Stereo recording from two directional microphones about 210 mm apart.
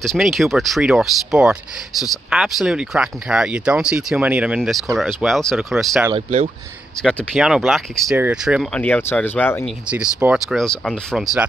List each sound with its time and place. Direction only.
0.0 s speech: centre (ahead or behind)
6.1 s speech: 30° right (ahead or behind)
7.0 s speech: centre (ahead or behind)
8.8 s speech: 10° left (ahead or behind)
9.8 s speech: 5° right (ahead or behind)